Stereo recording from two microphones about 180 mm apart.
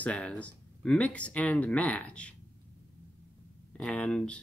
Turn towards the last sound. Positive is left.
turn(degrees=5)  # may be behind; listen again after turning